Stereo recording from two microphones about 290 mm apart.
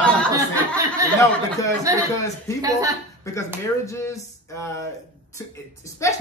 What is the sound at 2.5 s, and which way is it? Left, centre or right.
Speech, centre.